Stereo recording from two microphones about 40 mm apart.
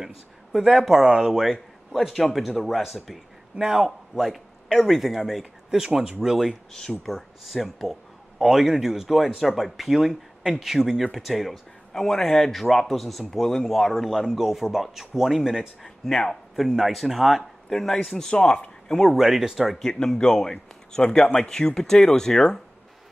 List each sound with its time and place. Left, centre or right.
0.0 s speech: centre
3.6 s a man's voice: right
4.6 s speech: centre
5.4 s a sound: centre
5.9 s speech: centre
6.7 s speech: centre
7.1 s speech: centre
11.9 s speech: centre
14.2 s speech: centre
17.6 s speech: centre
19.1 s speech: centre
19.8 s speech: centre